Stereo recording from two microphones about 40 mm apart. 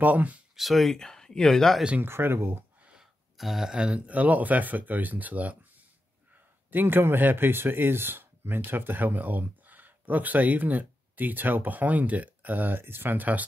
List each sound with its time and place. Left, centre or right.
0.0 s speech: right
0.6 s speech: centre
0.9 s speech: centre
2.0 s speech: right
3.3 s speech: centre
3.7 s speech: right
4.0 s speech: right
6.7 s a man's voice: right